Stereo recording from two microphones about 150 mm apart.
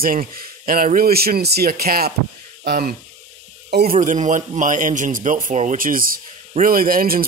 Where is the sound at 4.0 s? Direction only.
55° right (ahead or behind).